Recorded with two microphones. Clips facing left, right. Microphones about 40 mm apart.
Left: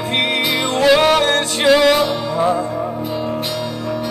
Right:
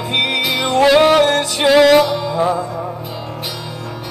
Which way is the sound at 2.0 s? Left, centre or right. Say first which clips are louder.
Right 1 dB; centre.